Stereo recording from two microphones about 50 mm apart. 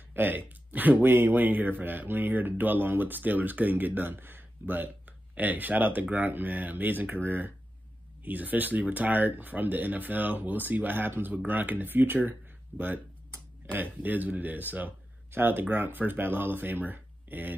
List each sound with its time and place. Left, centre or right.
0.1 s speech: right
13.6 s a sound: right
14.0 s speech: right